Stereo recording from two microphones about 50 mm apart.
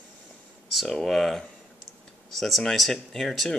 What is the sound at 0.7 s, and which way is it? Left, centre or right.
Speech, centre.